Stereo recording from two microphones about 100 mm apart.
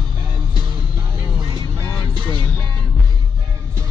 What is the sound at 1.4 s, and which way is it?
Vehicle, 50° right (ahead or behind).